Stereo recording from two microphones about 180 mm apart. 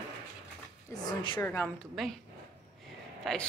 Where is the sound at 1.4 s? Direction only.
15° left (ahead or behind).